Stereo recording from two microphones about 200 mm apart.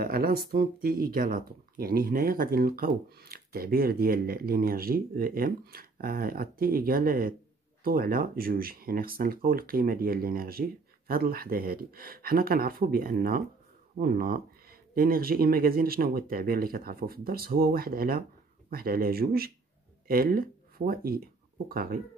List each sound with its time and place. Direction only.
0.0 s speech: 50° right (ahead or behind)